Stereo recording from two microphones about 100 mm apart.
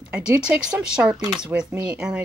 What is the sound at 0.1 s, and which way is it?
Speech, 15° right (ahead or behind).